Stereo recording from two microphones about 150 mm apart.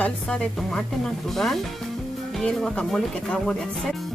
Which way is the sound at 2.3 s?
5° left (ahead or behind).